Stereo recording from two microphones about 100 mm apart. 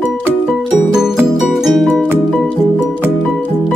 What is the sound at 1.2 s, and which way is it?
Music, centre (ahead or behind).